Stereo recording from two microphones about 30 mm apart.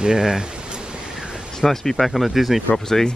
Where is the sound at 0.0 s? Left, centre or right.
Centre.